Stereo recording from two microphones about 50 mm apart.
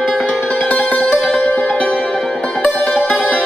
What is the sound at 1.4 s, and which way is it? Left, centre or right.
Music, left.